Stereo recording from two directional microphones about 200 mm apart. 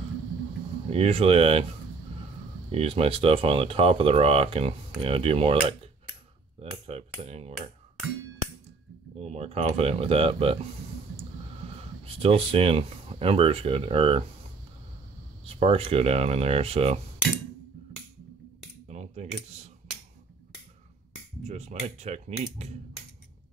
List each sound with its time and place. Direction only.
0.8 s speech: 30° right (ahead or behind)
2.7 s speech: 30° right (ahead or behind)
9.2 s speech: 30° right (ahead or behind)
12.2 s speech: 30° right (ahead or behind)
15.4 s speech: 30° right (ahead or behind)
18.9 s typing: 35° right (ahead or behind)
21.5 s speech: 35° right (ahead or behind)